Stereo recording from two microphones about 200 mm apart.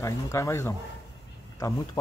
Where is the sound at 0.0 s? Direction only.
15° left (ahead or behind).